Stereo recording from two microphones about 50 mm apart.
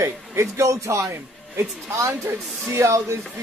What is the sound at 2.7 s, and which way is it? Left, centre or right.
Speech, right.